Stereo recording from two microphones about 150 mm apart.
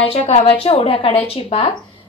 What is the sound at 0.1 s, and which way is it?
A woman's voice, 40° left (ahead or behind).